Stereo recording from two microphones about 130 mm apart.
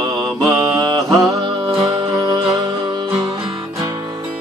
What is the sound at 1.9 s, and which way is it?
Music, 30° right (ahead or behind).